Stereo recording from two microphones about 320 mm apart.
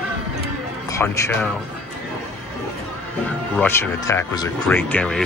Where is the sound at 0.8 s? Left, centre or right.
Centre.